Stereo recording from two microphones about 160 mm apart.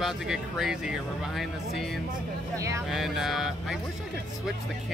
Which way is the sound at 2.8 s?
Centre (ahead or behind).